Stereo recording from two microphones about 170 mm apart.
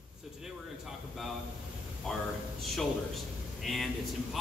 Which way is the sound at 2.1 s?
Centre (ahead or behind).